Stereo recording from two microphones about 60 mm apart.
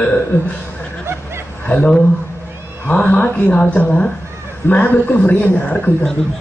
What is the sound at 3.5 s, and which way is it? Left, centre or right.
Speech, centre.